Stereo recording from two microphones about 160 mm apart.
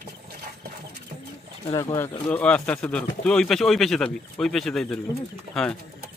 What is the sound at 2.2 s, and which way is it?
Speech, 5° left (ahead or behind).